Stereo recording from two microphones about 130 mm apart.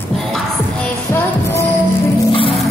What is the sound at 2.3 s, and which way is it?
Music, 45° left (ahead or behind).